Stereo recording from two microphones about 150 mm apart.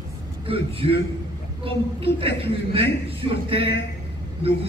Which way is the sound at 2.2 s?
40° right (ahead or behind).